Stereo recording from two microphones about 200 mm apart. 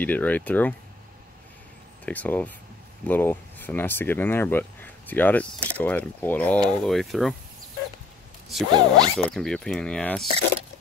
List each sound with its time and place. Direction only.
0.0 s speech: 10° left (ahead or behind)
2.0 s speech: 10° left (ahead or behind)
8.7 s speech: 20° right (ahead or behind)
9.2 s speech: 5° left (ahead or behind)